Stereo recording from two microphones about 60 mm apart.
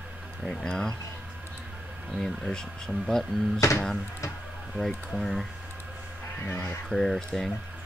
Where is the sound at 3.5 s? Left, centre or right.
Left.